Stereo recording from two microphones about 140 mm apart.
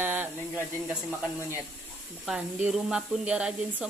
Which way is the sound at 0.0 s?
15° right (ahead or behind).